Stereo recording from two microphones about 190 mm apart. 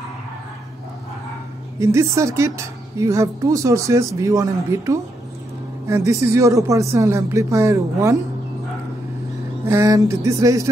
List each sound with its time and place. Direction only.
1.8 s speech: 15° right (ahead or behind)
9.7 s speech: 15° right (ahead or behind)